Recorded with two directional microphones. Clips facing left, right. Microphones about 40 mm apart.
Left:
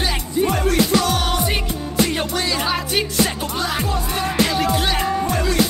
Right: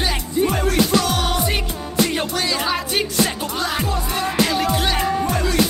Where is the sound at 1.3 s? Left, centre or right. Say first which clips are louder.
Even; centre.